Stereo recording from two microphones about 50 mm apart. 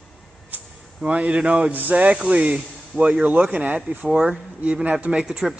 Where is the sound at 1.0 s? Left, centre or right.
Right.